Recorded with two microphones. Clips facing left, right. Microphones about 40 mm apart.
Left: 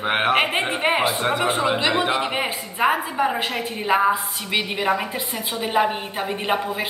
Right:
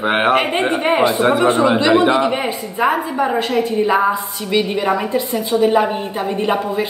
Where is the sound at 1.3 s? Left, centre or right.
Centre.